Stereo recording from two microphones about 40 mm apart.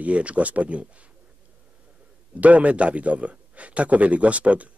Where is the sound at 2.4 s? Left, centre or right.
Right.